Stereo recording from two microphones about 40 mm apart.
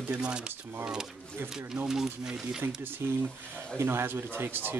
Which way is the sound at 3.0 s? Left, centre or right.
Right.